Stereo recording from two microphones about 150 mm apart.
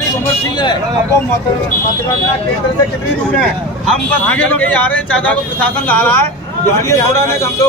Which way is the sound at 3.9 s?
10° left (ahead or behind).